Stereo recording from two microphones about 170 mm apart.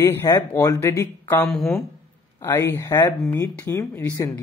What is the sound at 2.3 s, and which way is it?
Speech, 15° left (ahead or behind).